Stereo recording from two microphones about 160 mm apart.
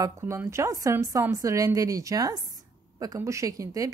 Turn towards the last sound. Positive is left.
turn(degrees=-20)  # may be behind; listen again after turning